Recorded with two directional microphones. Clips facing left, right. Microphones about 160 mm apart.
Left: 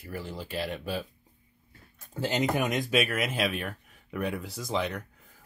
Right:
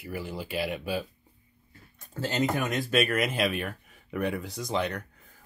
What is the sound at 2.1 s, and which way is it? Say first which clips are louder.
Speech: even; 15° left (ahead or behind).